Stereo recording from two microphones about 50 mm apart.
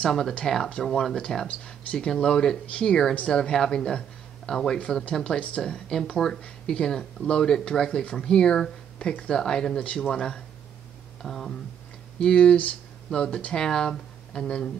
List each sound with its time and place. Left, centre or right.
0.0 s speech: centre
4.7 s speech: left
9.8 s speech: left
10.1 s speech: centre
12.2 s speech: centre